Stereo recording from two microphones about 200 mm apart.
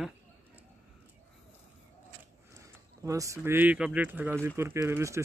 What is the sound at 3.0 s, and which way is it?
Speech, 15° right (ahead or behind).